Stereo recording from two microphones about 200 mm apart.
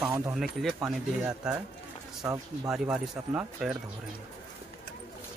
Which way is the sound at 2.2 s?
15° right (ahead or behind).